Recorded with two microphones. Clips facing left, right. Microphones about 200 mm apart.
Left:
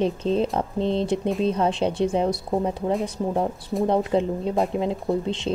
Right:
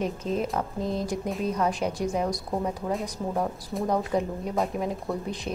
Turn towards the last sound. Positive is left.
turn(degrees=25)  # may be behind; listen again after turning